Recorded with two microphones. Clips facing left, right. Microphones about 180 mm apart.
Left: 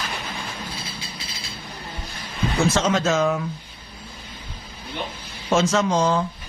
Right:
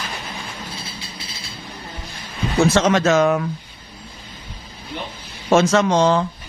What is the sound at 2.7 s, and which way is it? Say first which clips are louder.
Speech: right 5 dB; 70° right (ahead or behind).